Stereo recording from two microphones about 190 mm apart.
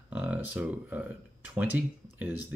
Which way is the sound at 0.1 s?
5° right (ahead or behind).